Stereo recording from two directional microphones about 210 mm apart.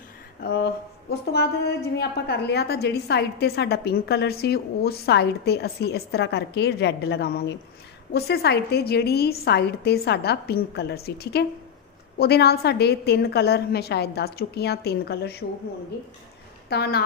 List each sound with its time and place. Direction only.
0.4 s a sound: 50° left (ahead or behind)
1.1 s a woman's voice: 50° left (ahead or behind)
16.6 s speech: 50° left (ahead or behind)